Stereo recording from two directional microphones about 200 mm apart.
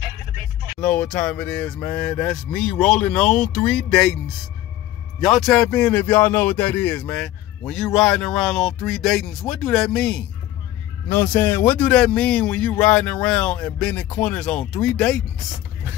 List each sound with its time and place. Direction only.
0.7 s speech: 5° left (ahead or behind)
5.2 s speech: centre (ahead or behind)